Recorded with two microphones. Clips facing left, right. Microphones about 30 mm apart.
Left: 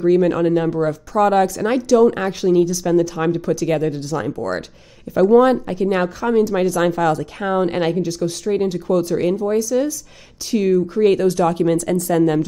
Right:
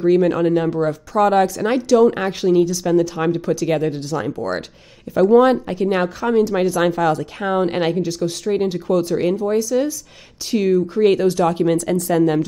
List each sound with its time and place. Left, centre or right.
0.2 s speech: centre